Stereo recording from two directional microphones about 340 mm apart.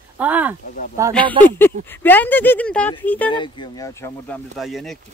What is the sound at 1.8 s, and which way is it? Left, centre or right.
Speech, centre.